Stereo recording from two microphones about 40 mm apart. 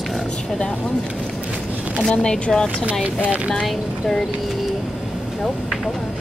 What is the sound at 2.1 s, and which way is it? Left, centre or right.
Speech, left.